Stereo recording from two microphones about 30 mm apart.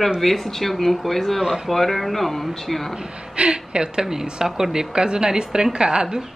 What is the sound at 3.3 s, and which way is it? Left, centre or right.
Speech, right.